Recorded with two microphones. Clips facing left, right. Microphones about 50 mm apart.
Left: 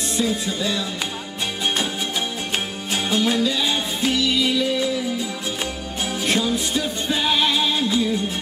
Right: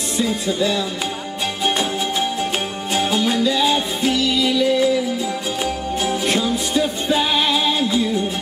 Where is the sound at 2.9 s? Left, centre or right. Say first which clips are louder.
Right 2 dB; centre.